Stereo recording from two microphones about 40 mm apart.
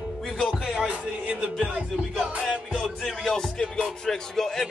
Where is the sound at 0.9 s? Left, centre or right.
Right.